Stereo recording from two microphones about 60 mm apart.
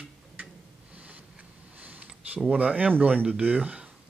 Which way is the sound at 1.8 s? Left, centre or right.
Right.